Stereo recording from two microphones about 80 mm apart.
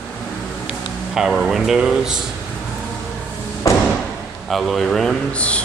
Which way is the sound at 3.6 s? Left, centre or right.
Left.